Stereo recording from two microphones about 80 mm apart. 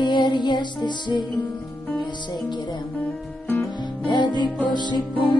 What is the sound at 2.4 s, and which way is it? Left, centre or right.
Music, left.